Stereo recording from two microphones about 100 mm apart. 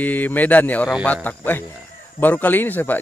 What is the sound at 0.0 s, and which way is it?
Speech, 15° left (ahead or behind).